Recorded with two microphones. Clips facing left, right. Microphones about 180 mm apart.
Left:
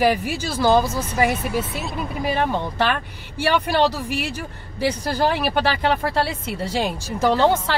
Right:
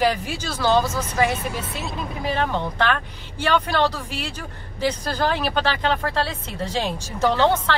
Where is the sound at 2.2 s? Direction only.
10° left (ahead or behind).